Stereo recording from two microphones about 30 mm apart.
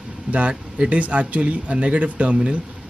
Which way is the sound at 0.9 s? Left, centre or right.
Right.